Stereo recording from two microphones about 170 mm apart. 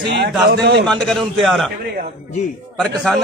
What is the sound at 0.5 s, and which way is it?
Speech, 70° right (ahead or behind).